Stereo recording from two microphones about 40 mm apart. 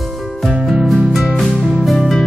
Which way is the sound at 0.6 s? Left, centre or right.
Centre.